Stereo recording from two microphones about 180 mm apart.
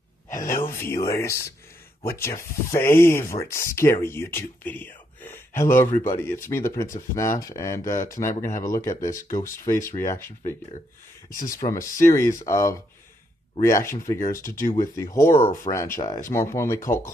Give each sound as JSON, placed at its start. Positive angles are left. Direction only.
{"t": 0.7, "sound": "speech", "side_deg": 15}
{"t": 8.4, "sound": "speech", "side_deg": 45}
{"t": 8.6, "sound": "speech", "side_deg": 15}
{"t": 11.5, "sound": "speech", "side_deg": 20}